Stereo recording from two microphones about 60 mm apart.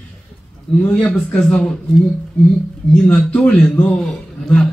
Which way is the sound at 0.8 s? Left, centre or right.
Centre.